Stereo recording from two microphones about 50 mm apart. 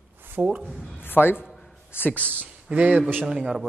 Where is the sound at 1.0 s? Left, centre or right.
Left.